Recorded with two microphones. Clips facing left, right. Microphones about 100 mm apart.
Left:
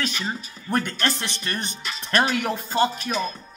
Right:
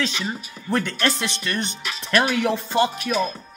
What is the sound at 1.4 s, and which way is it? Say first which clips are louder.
Speech: right 3 dB; 40° left (ahead or behind).